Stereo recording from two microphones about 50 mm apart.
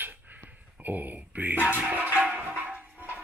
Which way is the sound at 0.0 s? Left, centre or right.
Right.